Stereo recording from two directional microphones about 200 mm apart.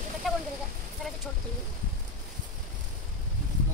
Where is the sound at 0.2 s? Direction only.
Centre (ahead or behind).